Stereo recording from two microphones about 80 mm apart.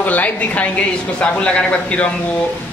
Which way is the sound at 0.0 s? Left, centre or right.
Left.